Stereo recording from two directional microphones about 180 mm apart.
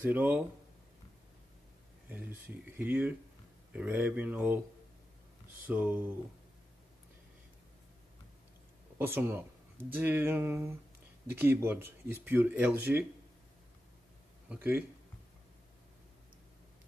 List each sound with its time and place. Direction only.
0.0 s speech: 10° right (ahead or behind)
2.0 s speech: 10° right (ahead or behind)
5.6 s speech: 10° right (ahead or behind)
8.9 s speech: 10° right (ahead or behind)
14.5 s speech: 10° right (ahead or behind)